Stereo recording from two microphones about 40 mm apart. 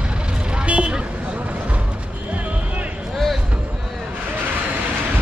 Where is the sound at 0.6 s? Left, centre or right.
Right.